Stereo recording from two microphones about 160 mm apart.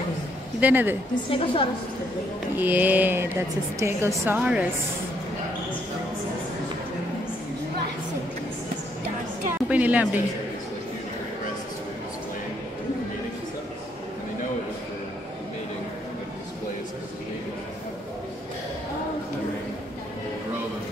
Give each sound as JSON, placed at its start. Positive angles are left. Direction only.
{"t": 0.6, "sound": "a woman's voice", "side_deg": -10}
{"t": 1.3, "sound": "a woman's voice", "side_deg": 35}
{"t": 2.5, "sound": "a woman's voice", "side_deg": -10}
{"t": 9.7, "sound": "a woman's voice", "side_deg": -10}